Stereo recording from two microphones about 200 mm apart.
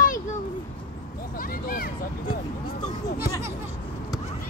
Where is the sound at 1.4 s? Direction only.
45° left (ahead or behind).